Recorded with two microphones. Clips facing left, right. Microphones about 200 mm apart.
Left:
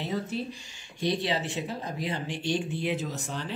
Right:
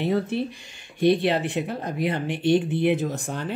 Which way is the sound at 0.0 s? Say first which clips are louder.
Right 7 dB; 60° right (ahead or behind).